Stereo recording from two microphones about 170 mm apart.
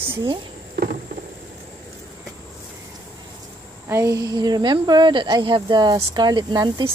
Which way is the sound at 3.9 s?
20° right (ahead or behind).